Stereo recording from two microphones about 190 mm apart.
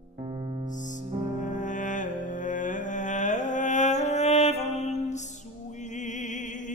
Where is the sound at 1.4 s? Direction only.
40° left (ahead or behind).